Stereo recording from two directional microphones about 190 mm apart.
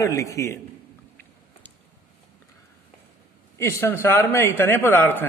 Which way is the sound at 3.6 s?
15° left (ahead or behind).